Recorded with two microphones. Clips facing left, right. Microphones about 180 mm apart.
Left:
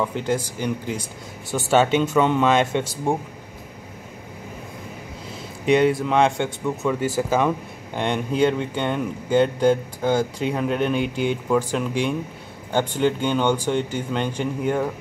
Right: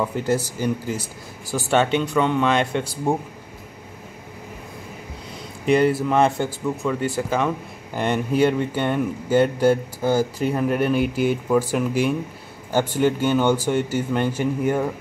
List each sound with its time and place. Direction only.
0.0 s speech: 10° right (ahead or behind)
5.7 s speech: centre (ahead or behind)
7.9 s speech: 5° right (ahead or behind)